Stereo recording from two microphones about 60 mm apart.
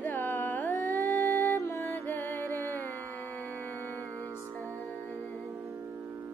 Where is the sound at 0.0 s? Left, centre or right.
Left.